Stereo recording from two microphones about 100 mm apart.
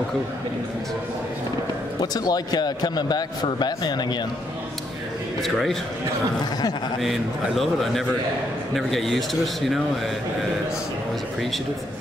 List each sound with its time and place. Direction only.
2.0 s a man's voice: 40° left (ahead or behind)
5.4 s speech: centre (ahead or behind)
7.0 s speech: centre (ahead or behind)